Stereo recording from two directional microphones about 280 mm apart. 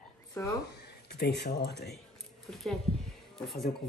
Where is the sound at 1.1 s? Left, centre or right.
Left.